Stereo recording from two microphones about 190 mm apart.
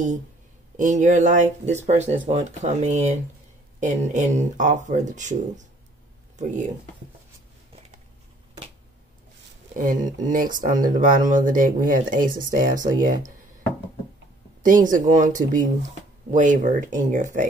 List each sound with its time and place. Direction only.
0.7 s speech: 40° right (ahead or behind)
9.8 s speech: 45° right (ahead or behind)
14.6 s speech: 45° right (ahead or behind)